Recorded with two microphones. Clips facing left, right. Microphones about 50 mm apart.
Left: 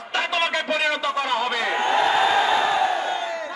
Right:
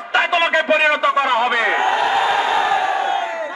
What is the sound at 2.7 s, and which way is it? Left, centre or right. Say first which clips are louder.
Crowd: right 4 dB; right.